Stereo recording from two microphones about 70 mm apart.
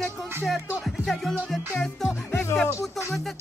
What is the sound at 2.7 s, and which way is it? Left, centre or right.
Speech, left.